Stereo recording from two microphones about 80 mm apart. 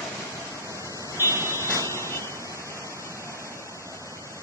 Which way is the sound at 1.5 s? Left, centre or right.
Left.